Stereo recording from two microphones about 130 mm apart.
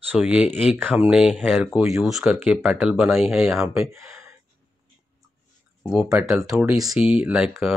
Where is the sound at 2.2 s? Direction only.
10° right (ahead or behind).